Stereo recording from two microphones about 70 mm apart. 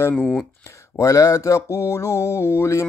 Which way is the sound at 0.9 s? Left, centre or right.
Left.